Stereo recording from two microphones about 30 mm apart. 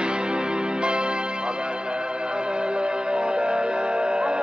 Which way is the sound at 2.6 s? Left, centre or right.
Right.